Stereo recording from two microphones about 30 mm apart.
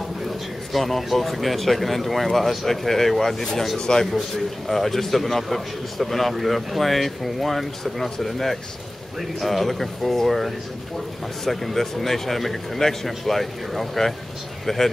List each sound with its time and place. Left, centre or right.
0.7 s speech: centre
3.7 s speech: centre
4.6 s speech: centre